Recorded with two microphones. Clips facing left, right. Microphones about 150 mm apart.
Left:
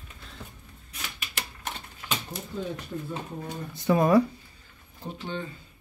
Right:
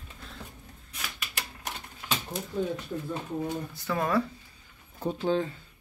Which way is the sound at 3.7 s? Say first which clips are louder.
Left 9 dB; 15° left (ahead or behind).